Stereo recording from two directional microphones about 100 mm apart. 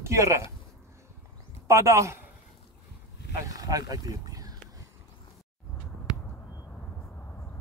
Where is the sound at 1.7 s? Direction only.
30° right (ahead or behind).